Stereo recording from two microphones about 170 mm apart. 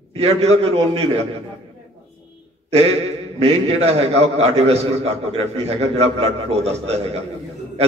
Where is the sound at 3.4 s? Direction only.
35° right (ahead or behind).